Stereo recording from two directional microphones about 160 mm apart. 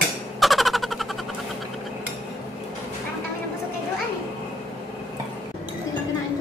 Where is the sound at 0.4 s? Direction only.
Centre (ahead or behind).